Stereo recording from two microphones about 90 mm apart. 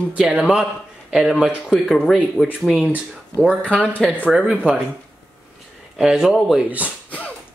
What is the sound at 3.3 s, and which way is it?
Speech, 20° right (ahead or behind).